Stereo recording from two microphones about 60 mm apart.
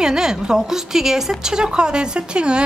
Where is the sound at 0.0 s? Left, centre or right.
Centre.